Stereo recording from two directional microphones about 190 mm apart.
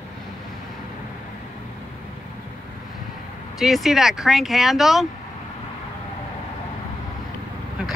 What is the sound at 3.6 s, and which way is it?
Speech, centre (ahead or behind).